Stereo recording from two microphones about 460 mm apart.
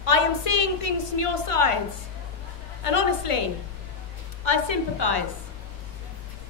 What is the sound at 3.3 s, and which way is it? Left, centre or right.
Speech, left.